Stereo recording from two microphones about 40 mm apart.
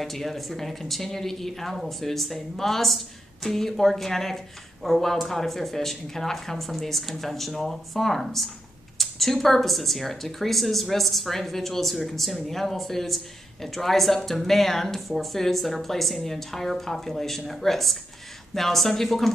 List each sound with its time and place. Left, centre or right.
0.0 s speech: centre